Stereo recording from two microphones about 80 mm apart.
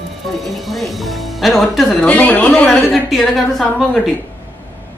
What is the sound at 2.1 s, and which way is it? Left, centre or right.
Speech, centre.